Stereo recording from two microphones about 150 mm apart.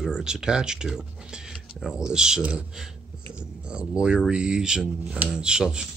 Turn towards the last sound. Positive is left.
turn(degrees=-5)  # may be behind; listen again after turning